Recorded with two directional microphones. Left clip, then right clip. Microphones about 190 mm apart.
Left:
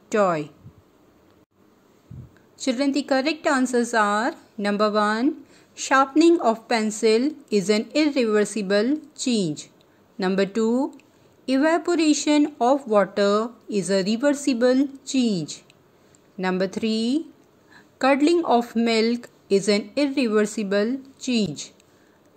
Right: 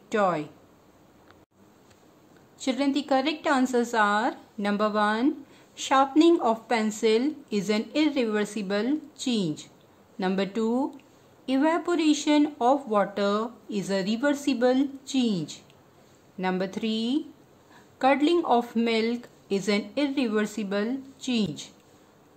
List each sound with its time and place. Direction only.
0.1 s speech: 20° left (ahead or behind)
2.6 s speech: 20° left (ahead or behind)